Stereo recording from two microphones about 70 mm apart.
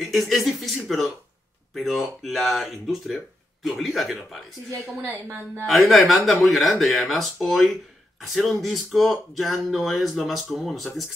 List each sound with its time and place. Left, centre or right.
0.0 s speech: centre
5.0 s a woman's voice: right
5.7 s speech: centre
8.4 s speech: centre